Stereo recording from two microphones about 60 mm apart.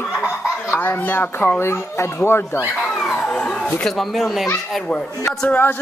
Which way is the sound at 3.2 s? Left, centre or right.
Centre.